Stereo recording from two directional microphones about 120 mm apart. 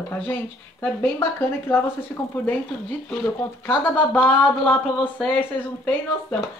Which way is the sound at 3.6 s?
10° left (ahead or behind).